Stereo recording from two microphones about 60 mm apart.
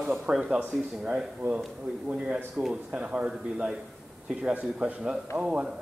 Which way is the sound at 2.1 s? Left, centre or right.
Centre.